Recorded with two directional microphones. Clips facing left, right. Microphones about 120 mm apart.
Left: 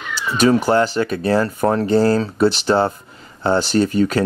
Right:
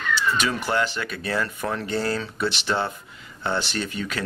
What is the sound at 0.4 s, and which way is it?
Speech, 40° left (ahead or behind).